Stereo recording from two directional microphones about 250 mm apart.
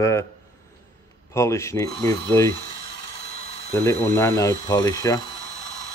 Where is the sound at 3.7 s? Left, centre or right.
Centre.